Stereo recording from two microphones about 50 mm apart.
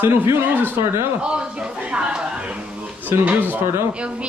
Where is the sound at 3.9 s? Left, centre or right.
Right.